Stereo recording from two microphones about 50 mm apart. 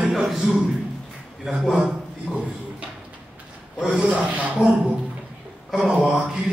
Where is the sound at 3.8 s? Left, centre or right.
Centre.